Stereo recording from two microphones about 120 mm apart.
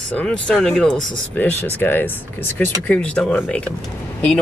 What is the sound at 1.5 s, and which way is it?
Speech, 15° left (ahead or behind).